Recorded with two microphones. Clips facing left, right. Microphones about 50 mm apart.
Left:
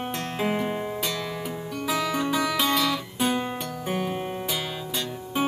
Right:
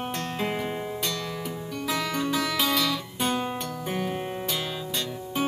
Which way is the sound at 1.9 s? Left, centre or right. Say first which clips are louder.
Left 2 dB; centre.